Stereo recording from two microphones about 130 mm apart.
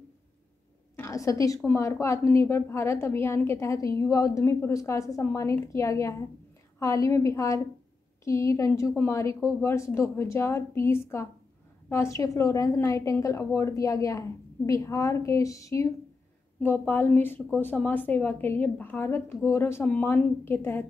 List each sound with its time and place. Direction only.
0.9 s a woman's voice: 25° left (ahead or behind)